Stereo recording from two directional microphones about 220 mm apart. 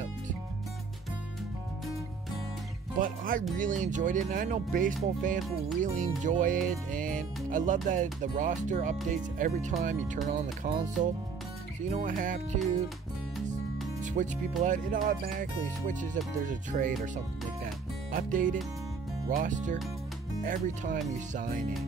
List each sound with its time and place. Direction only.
3.0 s speech: 40° right (ahead or behind)
3.5 s music: 35° right (ahead or behind)
11.9 s music: 35° right (ahead or behind)
14.0 s music: 35° right (ahead or behind)
18.1 s music: 35° right (ahead or behind)